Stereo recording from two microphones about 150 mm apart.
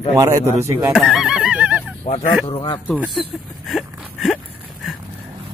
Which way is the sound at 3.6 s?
Centre (ahead or behind).